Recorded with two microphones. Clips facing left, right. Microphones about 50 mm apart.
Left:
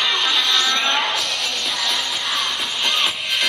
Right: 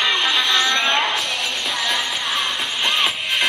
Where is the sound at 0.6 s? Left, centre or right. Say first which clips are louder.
Right 1 dB; centre.